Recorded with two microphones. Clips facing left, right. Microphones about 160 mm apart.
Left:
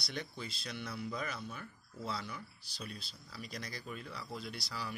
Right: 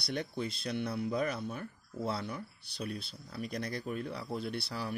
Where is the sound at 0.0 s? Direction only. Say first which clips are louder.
Right 7 dB; 55° right (ahead or behind).